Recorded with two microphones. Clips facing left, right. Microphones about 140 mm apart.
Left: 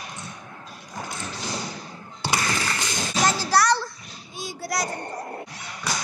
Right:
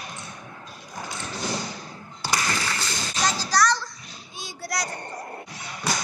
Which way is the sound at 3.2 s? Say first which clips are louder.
Left 2 dB; 65° left (ahead or behind).